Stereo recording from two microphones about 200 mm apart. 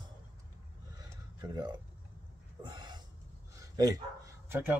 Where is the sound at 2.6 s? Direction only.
20° right (ahead or behind).